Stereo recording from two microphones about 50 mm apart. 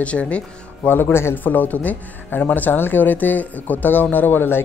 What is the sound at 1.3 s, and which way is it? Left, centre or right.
Speech, left.